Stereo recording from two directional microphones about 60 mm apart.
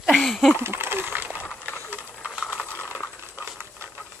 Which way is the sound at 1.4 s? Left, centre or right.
Left.